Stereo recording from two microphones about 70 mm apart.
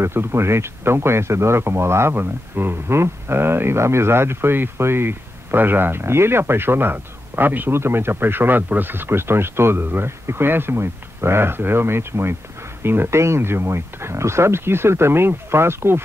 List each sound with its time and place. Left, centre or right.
0.0 s speech: right